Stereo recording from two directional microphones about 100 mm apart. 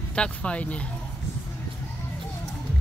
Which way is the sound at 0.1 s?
10° left (ahead or behind).